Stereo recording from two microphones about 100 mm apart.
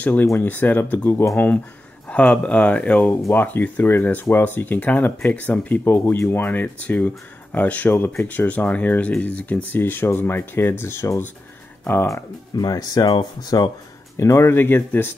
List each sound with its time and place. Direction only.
0.0 s speech: 15° left (ahead or behind)
12.5 s speech: 40° left (ahead or behind)
14.1 s speech: 30° left (ahead or behind)